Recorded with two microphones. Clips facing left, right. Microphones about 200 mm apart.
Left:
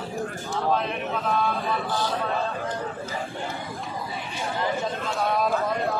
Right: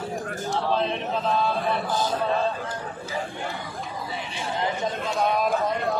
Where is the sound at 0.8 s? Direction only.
30° right (ahead or behind).